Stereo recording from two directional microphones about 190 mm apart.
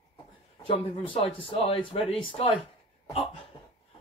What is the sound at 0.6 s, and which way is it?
Speech, 30° left (ahead or behind).